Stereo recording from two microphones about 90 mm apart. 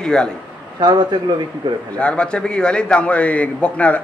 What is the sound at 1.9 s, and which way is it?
A man's voice, 10° left (ahead or behind).